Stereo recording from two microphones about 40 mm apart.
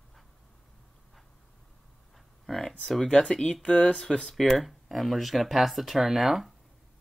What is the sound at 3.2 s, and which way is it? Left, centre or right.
Speech, centre.